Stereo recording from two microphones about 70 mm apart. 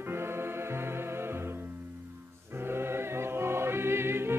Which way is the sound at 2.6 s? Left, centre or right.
Right.